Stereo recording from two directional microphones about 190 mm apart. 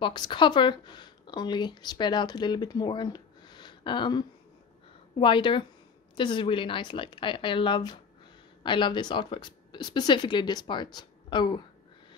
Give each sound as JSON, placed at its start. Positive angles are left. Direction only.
{"t": 0.0, "sound": "speech", "side_deg": 25}